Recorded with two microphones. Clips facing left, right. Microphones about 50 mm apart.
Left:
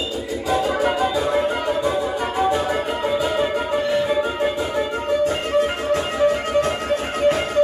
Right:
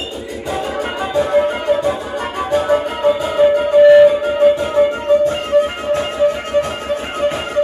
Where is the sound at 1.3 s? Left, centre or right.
Right.